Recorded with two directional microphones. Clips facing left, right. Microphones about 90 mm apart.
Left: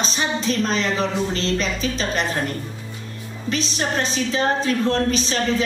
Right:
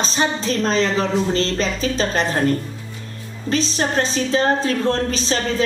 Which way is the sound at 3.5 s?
35° right (ahead or behind).